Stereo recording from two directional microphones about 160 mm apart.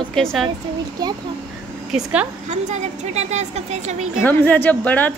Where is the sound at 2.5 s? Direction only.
45° right (ahead or behind).